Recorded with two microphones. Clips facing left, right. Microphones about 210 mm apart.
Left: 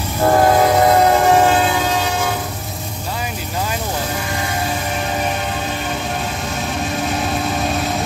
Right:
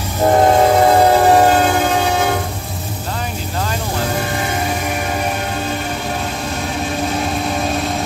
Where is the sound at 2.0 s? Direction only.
60° right (ahead or behind).